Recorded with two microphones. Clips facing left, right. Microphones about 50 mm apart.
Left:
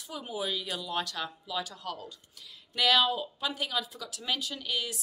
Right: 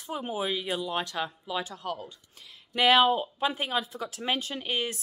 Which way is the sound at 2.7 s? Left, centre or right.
Right.